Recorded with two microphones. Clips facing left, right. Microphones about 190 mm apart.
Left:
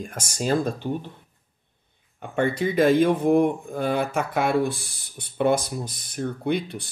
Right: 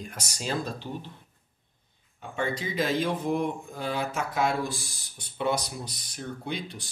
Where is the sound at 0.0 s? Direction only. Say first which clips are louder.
Left 8 dB; 50° left (ahead or behind).